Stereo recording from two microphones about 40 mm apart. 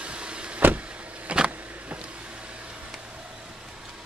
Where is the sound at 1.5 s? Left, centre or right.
Right.